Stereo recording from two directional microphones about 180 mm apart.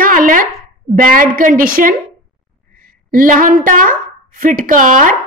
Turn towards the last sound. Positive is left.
turn(degrees=-50)  # may be behind; listen again after turning